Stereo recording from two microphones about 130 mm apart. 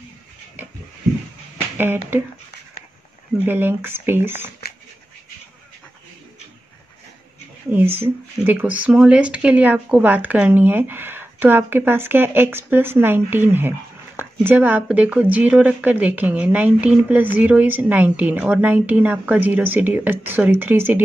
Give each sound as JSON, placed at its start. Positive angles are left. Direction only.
{"t": 1.8, "sound": "speech", "side_deg": -15}
{"t": 3.4, "sound": "speech", "side_deg": -15}
{"t": 7.7, "sound": "speech", "side_deg": -15}